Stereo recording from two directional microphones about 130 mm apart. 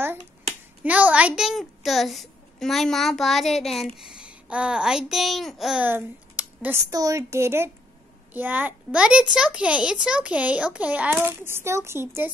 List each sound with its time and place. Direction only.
0.8 s a child's voice: 10° right (ahead or behind)
5.9 s a sound: 15° right (ahead or behind)
6.9 s a woman's voice: 25° right (ahead or behind)